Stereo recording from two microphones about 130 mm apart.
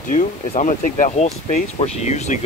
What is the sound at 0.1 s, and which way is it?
Speech, 65° left (ahead or behind).